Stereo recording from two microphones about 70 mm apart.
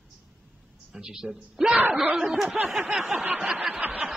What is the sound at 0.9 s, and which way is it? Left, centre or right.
A man's voice, centre.